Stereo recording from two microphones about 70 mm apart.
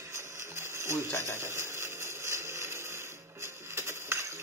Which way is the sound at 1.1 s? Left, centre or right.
Left.